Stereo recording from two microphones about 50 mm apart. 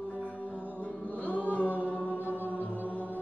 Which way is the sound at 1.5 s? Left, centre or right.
Left.